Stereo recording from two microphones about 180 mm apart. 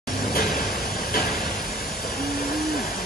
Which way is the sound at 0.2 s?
55° left (ahead or behind).